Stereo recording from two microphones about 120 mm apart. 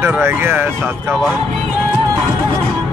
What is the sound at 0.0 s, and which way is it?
Speech, 20° right (ahead or behind).